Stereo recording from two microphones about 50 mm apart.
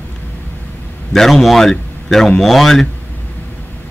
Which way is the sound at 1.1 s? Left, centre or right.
Centre.